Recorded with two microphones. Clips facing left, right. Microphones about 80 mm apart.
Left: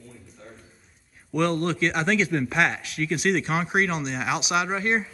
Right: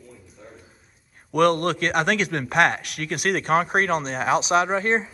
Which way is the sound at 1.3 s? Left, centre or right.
Right.